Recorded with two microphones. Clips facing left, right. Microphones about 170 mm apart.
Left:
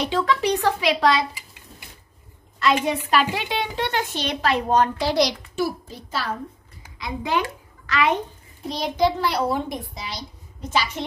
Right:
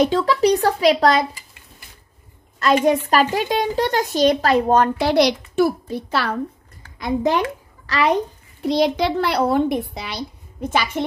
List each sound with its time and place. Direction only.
0.0 s speech: 40° right (ahead or behind)
2.8 s a woman's voice: 45° right (ahead or behind); by 6.3 s 65° right (ahead or behind)
7.0 s a woman's voice: 45° right (ahead or behind)
8.6 s a child's voice: 75° right (ahead or behind); by 11.1 s 55° right (ahead or behind)